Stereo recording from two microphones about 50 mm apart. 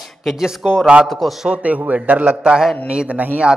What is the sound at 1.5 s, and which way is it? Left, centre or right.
Speech, right.